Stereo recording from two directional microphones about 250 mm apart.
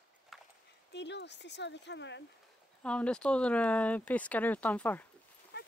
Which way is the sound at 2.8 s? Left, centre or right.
Centre.